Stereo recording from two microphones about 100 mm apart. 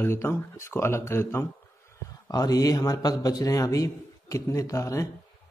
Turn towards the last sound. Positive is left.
turn(degrees=30)  # may be behind; listen again after turning